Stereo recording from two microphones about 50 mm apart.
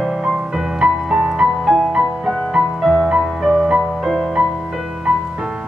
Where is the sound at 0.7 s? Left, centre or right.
Centre.